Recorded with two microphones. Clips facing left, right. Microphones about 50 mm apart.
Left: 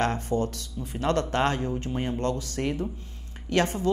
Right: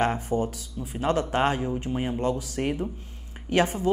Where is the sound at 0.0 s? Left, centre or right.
Centre.